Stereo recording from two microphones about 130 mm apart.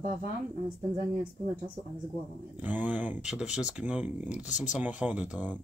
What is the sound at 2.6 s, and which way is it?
Speech, 15° right (ahead or behind).